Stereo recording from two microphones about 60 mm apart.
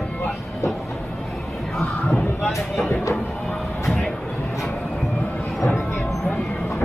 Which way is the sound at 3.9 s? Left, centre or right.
Centre.